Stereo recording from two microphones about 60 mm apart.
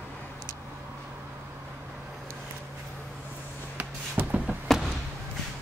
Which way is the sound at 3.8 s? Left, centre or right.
Right.